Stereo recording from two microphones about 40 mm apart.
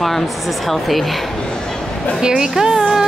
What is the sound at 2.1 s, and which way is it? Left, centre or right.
Speech, centre.